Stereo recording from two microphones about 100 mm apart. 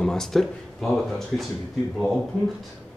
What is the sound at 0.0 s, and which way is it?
Speech, 5° left (ahead or behind).